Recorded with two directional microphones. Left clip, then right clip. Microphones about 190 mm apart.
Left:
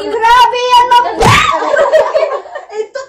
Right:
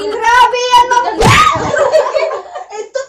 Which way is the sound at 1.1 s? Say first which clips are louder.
Even; centre (ahead or behind).